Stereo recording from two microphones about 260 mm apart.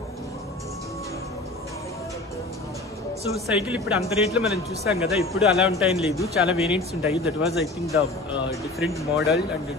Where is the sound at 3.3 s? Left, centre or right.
Centre.